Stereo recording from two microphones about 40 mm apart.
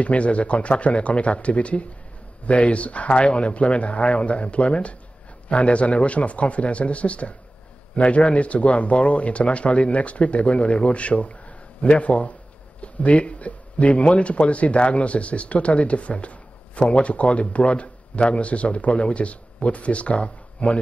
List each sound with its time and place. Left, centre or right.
0.0 s speech: left